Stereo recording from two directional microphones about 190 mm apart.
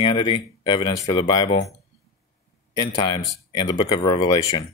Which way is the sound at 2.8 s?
25° left (ahead or behind).